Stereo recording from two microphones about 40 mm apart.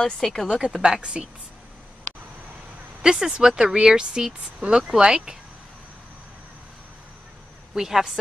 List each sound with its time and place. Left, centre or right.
0.2 s a woman's voice: centre
0.7 s speech: centre
1.0 s speech: right
3.0 s speech: centre
7.7 s speech: centre